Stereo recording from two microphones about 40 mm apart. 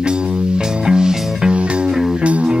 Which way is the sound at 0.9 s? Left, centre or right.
Centre.